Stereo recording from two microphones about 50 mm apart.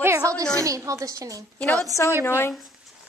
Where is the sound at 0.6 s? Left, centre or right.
Right.